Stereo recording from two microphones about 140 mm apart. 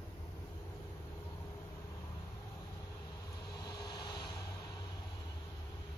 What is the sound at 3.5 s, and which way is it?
Vehicle, 30° left (ahead or behind).